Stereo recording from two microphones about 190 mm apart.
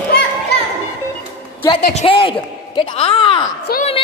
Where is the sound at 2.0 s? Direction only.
25° left (ahead or behind).